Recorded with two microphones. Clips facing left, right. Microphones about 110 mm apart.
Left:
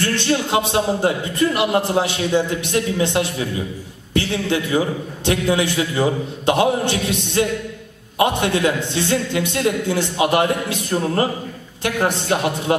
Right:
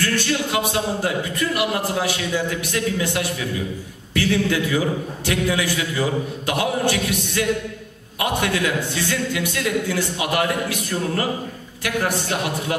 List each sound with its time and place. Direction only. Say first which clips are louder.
0.0 s a man's voice: left 2 dB; 25° left (ahead or behind)